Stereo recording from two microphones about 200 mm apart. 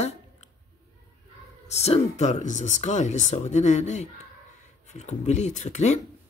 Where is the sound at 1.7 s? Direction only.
30° left (ahead or behind).